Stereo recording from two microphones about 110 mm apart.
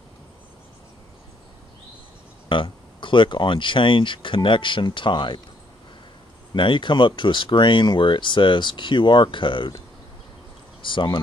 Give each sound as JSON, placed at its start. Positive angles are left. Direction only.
{"t": 2.5, "sound": "speech", "side_deg": 50}
{"t": 6.5, "sound": "speech", "side_deg": 50}
{"t": 10.8, "sound": "speech", "side_deg": 45}